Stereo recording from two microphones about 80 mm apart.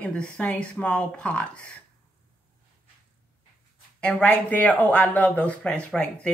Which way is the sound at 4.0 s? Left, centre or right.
Centre.